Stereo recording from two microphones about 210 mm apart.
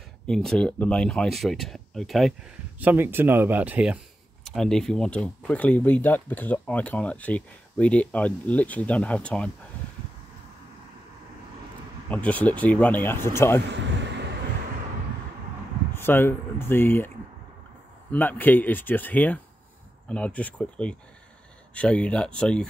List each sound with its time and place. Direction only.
0.3 s speech: centre (ahead or behind)
12.1 s speech: 5° left (ahead or behind)
13.7 s a sound: 55° right (ahead or behind)
15.9 s speech: 10° left (ahead or behind)
18.1 s speech: 10° left (ahead or behind)